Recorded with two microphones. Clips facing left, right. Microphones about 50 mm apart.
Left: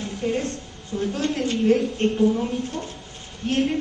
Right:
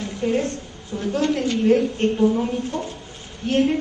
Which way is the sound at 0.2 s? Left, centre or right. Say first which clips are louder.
Right 4 dB; centre.